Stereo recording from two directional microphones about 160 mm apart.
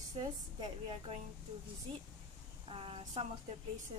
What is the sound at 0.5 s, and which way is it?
Speech, 35° right (ahead or behind).